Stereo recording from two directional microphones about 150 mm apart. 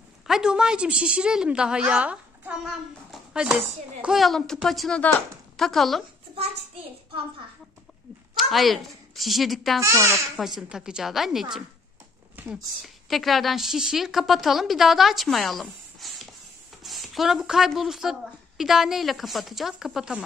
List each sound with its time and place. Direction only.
0.3 s a woman's voice: 5° right (ahead or behind)
3.1 s a sound: 5° right (ahead or behind)
4.0 s a woman's voice: centre (ahead or behind)
8.4 s a woman's voice: centre (ahead or behind)
9.8 s a child's voice: 20° right (ahead or behind)
10.3 s a woman's voice: 5° right (ahead or behind)
12.8 s a woman's voice: centre (ahead or behind)